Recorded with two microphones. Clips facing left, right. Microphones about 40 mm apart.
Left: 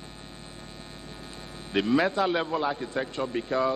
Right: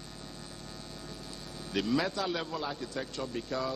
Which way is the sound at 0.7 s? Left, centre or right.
Left.